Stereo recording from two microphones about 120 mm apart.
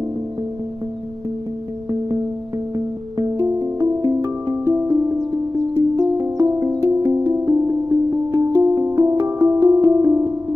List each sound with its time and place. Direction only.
3.2 s music: 30° right (ahead or behind)